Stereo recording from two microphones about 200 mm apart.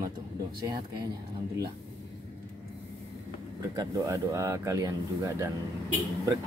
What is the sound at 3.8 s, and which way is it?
Speech, 15° right (ahead or behind).